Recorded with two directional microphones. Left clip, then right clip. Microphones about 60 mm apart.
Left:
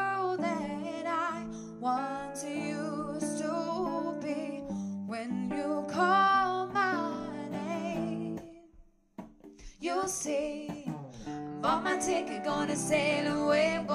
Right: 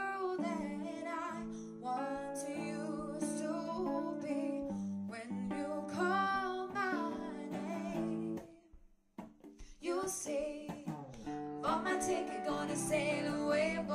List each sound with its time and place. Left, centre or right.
0.0 s music: left
9.8 s music: left